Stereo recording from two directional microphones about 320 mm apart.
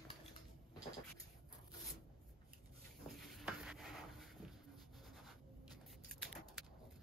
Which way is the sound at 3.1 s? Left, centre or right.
Centre.